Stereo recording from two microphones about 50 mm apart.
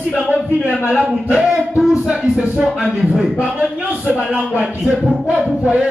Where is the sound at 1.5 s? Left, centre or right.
Centre.